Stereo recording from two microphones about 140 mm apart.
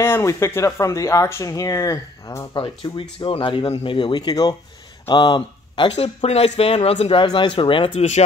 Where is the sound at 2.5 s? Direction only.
35° left (ahead or behind).